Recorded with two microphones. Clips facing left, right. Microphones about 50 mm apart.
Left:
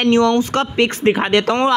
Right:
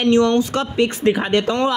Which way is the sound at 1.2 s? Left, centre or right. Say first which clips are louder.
Left 3 dB; left.